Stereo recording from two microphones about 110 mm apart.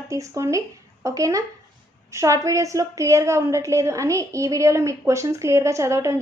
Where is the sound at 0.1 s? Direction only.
30° right (ahead or behind).